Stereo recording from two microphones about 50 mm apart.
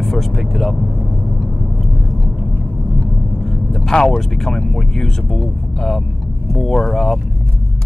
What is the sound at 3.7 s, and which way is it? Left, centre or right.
Speech, centre.